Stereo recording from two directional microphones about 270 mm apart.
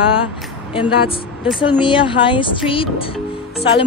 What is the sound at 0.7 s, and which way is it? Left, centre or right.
Speech, centre.